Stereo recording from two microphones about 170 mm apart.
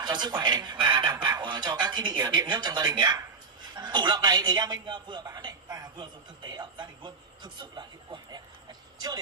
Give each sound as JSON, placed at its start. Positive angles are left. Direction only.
{"t": 0.0, "sound": "a man's voice", "side_deg": -25}